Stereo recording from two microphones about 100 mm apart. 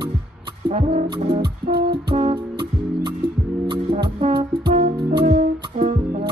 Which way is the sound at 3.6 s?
60° right (ahead or behind).